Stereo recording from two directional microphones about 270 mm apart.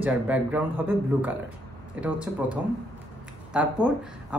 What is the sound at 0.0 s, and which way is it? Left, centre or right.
Speech, centre.